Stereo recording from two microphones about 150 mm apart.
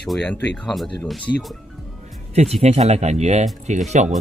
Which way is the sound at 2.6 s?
45° right (ahead or behind).